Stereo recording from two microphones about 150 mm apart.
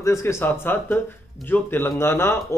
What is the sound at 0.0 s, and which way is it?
Speech, 20° left (ahead or behind).